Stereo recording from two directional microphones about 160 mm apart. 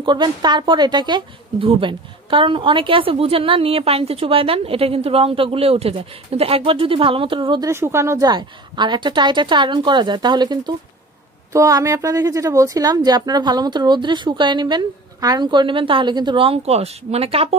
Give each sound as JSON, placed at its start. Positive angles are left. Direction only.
{"t": 0.0, "sound": "a woman's voice", "side_deg": -30}
{"t": 7.7, "sound": "a woman's voice", "side_deg": -15}